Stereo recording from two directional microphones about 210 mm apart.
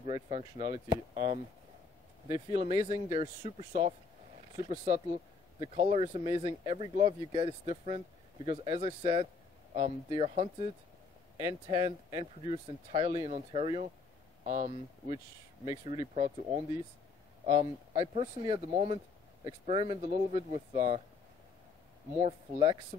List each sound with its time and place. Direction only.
0.0 s speech: 25° right (ahead or behind)
2.2 s speech: 20° right (ahead or behind)
11.3 s speech: 20° right (ahead or behind)
15.6 s a man's voice: 20° right (ahead or behind)
22.2 s speech: 25° right (ahead or behind)